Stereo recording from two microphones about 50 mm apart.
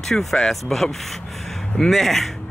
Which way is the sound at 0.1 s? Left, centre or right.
Centre.